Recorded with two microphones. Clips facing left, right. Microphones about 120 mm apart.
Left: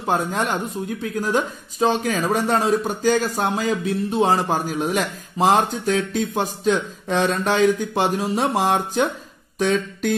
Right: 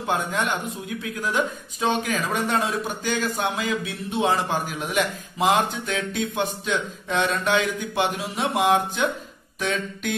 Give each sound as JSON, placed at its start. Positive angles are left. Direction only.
{"t": 0.0, "sound": "a woman's voice", "side_deg": 35}